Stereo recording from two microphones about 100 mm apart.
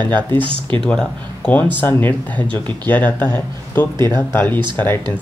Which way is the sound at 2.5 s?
50° right (ahead or behind).